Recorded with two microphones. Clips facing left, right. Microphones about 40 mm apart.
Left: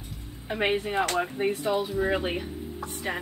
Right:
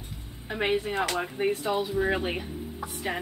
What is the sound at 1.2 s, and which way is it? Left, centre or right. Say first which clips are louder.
A woman's voice: even; centre.